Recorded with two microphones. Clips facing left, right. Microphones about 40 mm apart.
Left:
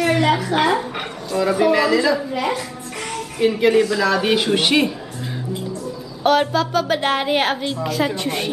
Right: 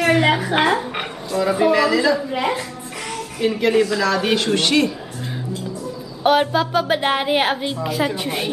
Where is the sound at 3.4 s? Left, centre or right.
Centre.